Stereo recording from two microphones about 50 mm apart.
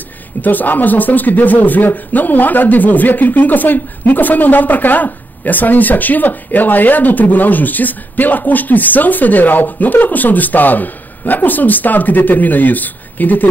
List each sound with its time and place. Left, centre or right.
0.4 s speech: left